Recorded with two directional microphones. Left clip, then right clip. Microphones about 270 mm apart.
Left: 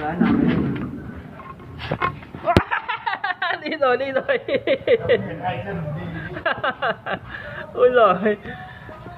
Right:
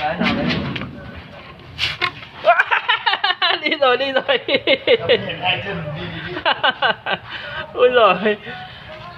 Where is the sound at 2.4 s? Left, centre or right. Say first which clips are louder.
Right 6 dB; right.